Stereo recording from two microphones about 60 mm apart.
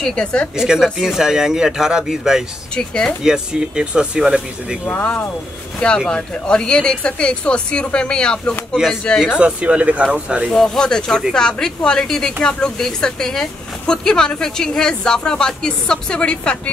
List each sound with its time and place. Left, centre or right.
0.0 s speech: centre
0.6 s speech: centre
2.7 s speech: centre
3.3 s speech: centre
4.8 s speech: left
5.8 s speech: centre
8.8 s speech: centre
10.5 s speech: centre